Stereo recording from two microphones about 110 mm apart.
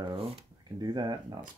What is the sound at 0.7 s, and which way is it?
Speech, 40° right (ahead or behind).